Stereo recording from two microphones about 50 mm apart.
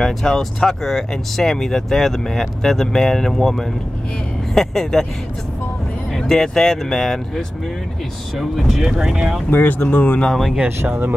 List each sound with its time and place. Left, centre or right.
0.0 s speech: centre
6.1 s speech: centre
8.4 s speech: centre
9.5 s speech: left
10.9 s speech: right